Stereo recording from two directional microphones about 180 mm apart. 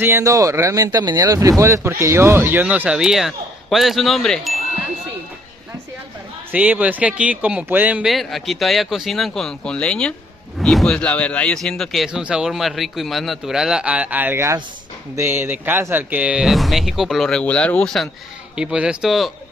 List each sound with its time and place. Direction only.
0.0 s speech: 15° right (ahead or behind); by 4.6 s centre (ahead or behind)
6.5 s speech: 10° right (ahead or behind)